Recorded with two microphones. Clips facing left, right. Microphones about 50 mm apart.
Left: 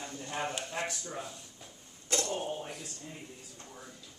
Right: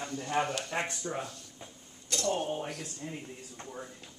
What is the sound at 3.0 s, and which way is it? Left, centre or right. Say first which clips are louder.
Speech: right 5 dB; right.